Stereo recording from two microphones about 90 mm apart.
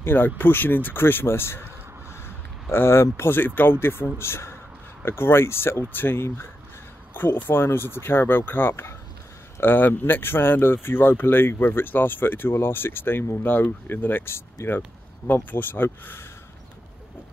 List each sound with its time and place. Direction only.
0.0 s speech: 25° left (ahead or behind)
2.7 s speech: 25° left (ahead or behind)